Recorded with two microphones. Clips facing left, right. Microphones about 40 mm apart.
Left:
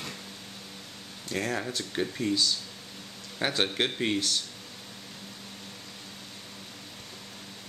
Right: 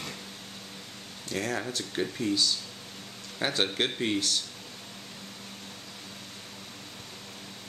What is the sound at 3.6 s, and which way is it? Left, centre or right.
Speech, centre.